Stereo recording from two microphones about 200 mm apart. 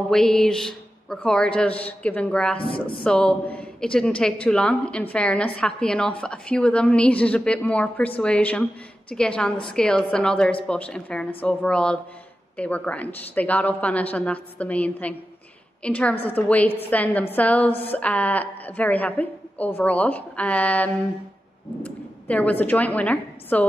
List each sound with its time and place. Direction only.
0.1 s a woman's voice: centre (ahead or behind)
2.6 s a woman's voice: 25° left (ahead or behind)
3.0 s a woman's voice: 5° left (ahead or behind)